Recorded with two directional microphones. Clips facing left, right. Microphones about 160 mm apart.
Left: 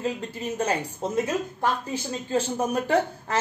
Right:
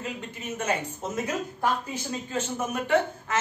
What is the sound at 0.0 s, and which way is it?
A woman's voice, 35° left (ahead or behind).